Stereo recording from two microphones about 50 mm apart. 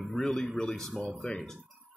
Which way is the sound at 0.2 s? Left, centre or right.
Centre.